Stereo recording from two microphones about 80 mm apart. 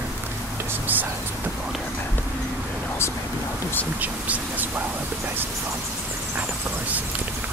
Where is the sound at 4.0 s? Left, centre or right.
Centre.